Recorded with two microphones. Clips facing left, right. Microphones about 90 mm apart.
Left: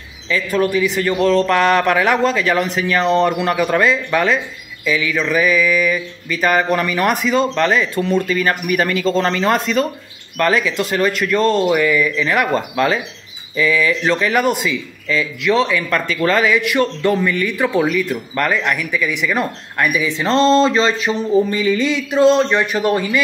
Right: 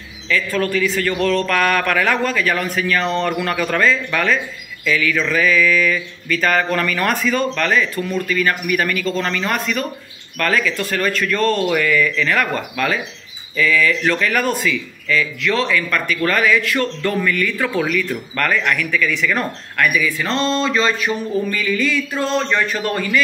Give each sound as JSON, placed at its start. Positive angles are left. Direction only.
{"t": 0.3, "sound": "speech", "side_deg": 20}